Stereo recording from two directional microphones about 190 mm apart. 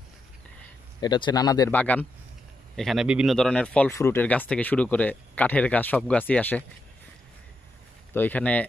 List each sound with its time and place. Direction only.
1.0 s speech: 20° left (ahead or behind)
1.8 s speech: 5° left (ahead or behind)
8.1 s speech: 10° left (ahead or behind)